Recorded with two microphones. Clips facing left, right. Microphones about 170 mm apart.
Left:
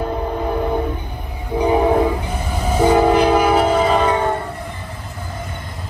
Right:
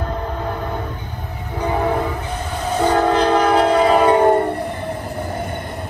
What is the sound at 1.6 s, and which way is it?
Train, 15° left (ahead or behind).